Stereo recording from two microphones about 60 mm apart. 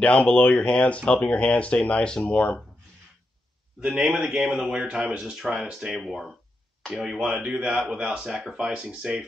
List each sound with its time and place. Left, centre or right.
0.0 s speech: left
3.9 s speech: centre